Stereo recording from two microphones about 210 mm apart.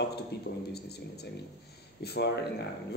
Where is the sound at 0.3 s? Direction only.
50° left (ahead or behind).